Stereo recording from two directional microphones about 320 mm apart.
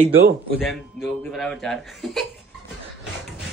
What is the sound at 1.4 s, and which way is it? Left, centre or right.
Speech, centre.